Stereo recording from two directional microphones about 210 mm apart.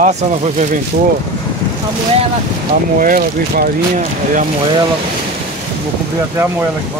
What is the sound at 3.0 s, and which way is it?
Speech, 40° right (ahead or behind).